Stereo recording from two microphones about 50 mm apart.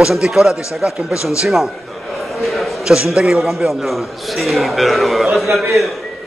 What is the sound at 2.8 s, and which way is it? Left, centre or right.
A man's voice, centre.